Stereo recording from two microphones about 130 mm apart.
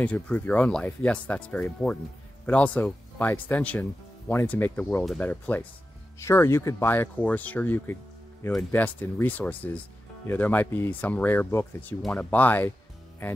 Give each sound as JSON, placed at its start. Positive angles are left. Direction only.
{"t": 0.0, "sound": "speech", "side_deg": 10}